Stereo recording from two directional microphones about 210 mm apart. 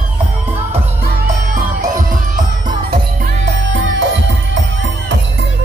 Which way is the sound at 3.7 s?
60° right (ahead or behind).